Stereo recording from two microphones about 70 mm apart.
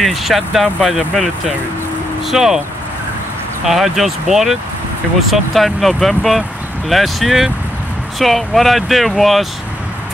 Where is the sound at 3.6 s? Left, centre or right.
Centre.